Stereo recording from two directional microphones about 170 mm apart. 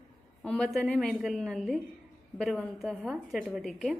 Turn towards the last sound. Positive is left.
turn(degrees=0)  # may be behind; listen again after turning